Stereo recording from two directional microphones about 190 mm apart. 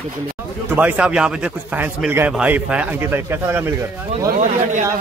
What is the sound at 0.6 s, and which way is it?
Speech, 10° right (ahead or behind).